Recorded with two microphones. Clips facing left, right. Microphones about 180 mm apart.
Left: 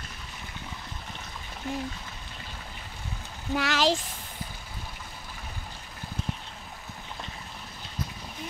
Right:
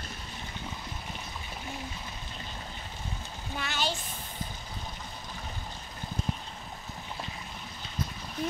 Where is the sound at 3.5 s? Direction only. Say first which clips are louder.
Left 8 dB; 90° left.